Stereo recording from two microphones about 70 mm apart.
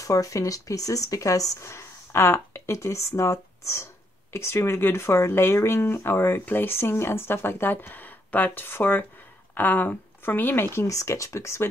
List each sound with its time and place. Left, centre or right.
0.0 s speech: left
10.9 s speech: left